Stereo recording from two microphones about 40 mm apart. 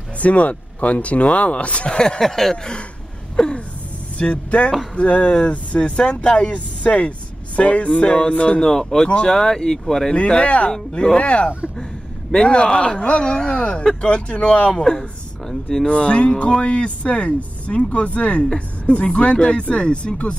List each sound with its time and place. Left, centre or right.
0.2 s speech: left
2.0 s speech: centre
2.2 s speech: centre
2.5 s speech: centre
4.2 s speech: left
8.6 s speech: centre
10.1 s speech: left
10.7 s speech: centre
15.9 s speech: left